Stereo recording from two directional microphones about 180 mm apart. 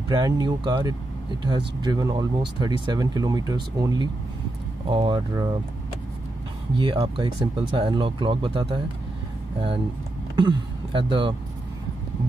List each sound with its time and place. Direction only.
0.1 s speech: 25° right (ahead or behind)
6.8 s speech: 25° right (ahead or behind)
10.3 s speech: 25° right (ahead or behind)